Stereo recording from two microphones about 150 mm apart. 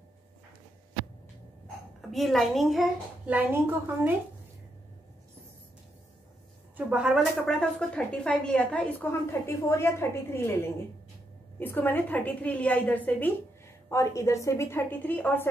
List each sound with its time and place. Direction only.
2.0 s a woman's voice: centre (ahead or behind)
3.3 s a woman's voice: 15° right (ahead or behind)
6.9 s speech: 5° right (ahead or behind); by 10.6 s 15° left (ahead or behind)
11.6 s a woman's voice: 15° left (ahead or behind)